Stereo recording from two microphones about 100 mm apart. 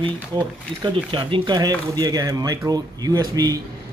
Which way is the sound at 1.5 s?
35° right (ahead or behind).